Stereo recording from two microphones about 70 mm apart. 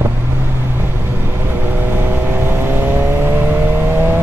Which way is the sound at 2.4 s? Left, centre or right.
Right.